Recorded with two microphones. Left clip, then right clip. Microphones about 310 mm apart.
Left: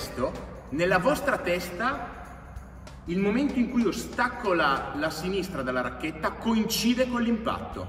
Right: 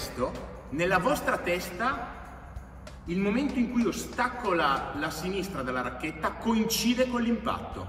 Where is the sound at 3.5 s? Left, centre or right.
Centre.